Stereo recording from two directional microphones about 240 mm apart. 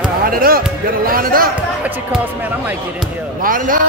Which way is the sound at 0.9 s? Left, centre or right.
Right.